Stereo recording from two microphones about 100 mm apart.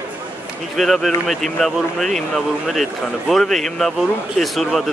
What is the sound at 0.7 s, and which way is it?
Speech, centre (ahead or behind).